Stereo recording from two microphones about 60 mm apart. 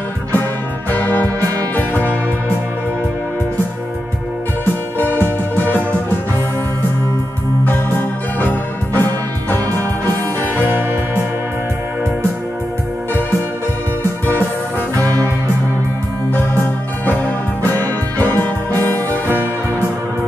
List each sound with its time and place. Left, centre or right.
1.8 s music: left
4.9 s music: left
7.6 s music: left
16.3 s music: left